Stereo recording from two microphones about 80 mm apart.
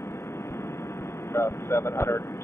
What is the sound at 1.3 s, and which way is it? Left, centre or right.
Speech, left.